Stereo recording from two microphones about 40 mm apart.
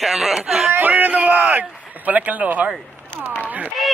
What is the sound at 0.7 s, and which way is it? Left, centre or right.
A man's voice, right.